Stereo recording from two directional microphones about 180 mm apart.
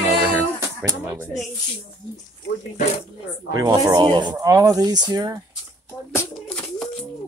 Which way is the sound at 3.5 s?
20° right (ahead or behind).